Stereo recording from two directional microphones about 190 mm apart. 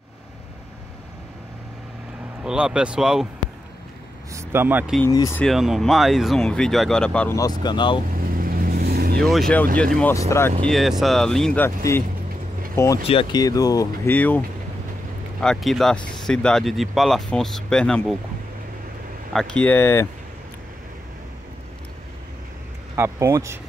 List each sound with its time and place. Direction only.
2.4 s speech: 5° right (ahead or behind)
4.3 s speech: 15° right (ahead or behind)
5.0 s speech: 15° left (ahead or behind)
5.4 s speech: centre (ahead or behind)
7.6 s speech: 25° left (ahead or behind)
8.3 s vehicle: 50° right (ahead or behind)
9.9 s speech: 15° left (ahead or behind)
10.7 s speech: centre (ahead or behind); by 13.0 s 15° left (ahead or behind)
13.0 s speech: 30° left (ahead or behind); by 14.4 s 10° left (ahead or behind)
15.4 s speech: centre (ahead or behind)
19.3 s speech: 5° left (ahead or behind)
22.9 s speech: 15° right (ahead or behind)